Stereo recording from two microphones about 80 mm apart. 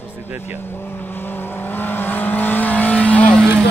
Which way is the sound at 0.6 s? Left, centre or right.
Left.